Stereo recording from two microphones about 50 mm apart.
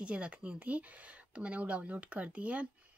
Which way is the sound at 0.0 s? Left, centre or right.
Right.